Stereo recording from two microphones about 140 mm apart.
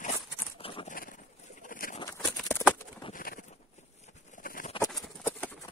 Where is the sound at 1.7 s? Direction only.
80° left.